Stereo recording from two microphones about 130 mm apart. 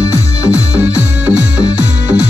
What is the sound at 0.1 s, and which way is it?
Music, 20° left (ahead or behind).